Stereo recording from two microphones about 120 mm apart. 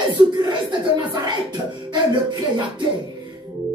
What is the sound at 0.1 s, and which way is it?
Chuckle, 40° right (ahead or behind).